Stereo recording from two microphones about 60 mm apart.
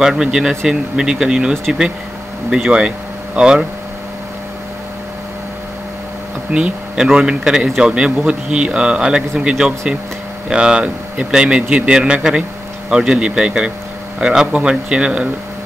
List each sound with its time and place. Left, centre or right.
0.0 s a man's voice: centre
2.5 s a man's voice: centre
6.5 s a man's voice: centre